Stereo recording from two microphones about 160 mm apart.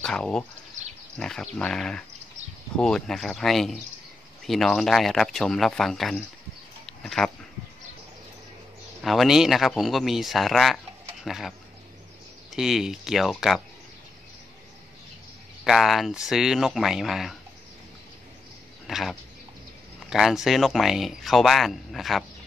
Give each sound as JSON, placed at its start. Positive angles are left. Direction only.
{"t": 0.0, "sound": "speech", "side_deg": 5}
{"t": 0.8, "sound": "a sound", "side_deg": -50}
{"t": 1.1, "sound": "speech", "side_deg": 5}
{"t": 6.9, "sound": "a sound", "side_deg": 5}
{"t": 9.0, "sound": "speech", "side_deg": 0}
{"t": 15.6, "sound": "speech", "side_deg": 0}
{"t": 18.9, "sound": "speech", "side_deg": 0}